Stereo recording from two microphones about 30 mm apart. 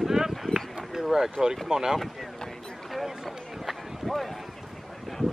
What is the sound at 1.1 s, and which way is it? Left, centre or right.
Boat, right.